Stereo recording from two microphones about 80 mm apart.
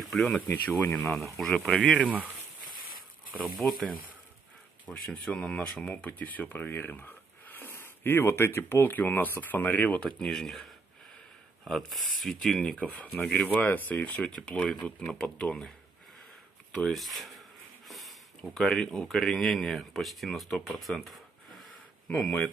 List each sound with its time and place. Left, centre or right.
0.1 s speech: centre
0.5 s speech: left
0.9 s speech: centre
3.6 s speech: centre
4.8 s speech: centre
10.0 s speech: centre
16.7 s speech: centre
17.8 s a sound: centre
18.4 s speech: centre
20.8 s a sound: centre
22.0 s speech: centre